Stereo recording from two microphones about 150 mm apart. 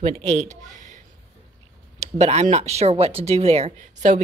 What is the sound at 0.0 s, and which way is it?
Speech, 45° right (ahead or behind).